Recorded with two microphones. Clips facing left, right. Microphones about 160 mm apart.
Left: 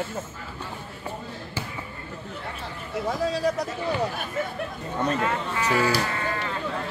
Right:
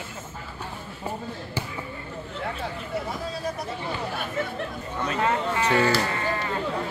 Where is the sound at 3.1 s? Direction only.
85° left.